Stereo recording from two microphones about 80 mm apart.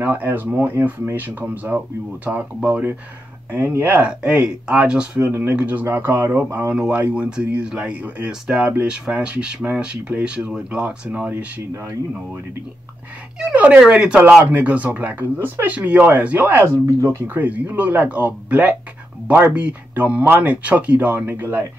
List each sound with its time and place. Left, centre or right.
0.0 s speech: right
5.9 s speech: right
6.7 s speech: centre
13.4 s speech: centre
15.3 s speech: right
15.6 s speech: centre
16.8 s speech: right
17.3 s speech: right